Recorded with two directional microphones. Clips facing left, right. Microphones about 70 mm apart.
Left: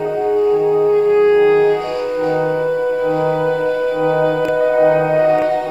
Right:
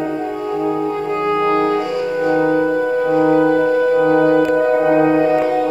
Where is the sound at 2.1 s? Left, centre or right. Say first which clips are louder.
Right 2 dB; centre.